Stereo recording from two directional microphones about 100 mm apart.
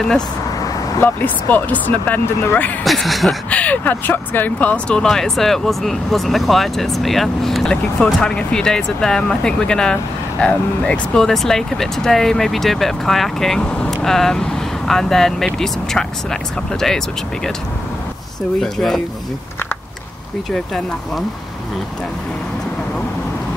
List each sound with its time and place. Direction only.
0.9 s speech: 20° left (ahead or behind)
2.8 s speech: centre (ahead or behind)
3.4 s speech: 15° left (ahead or behind)
18.6 s speech: 5° left (ahead or behind)